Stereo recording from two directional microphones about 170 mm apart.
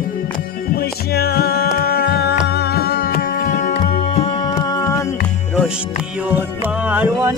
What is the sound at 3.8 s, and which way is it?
Music, 35° left (ahead or behind).